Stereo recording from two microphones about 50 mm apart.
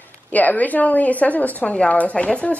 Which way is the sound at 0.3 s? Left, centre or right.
Left.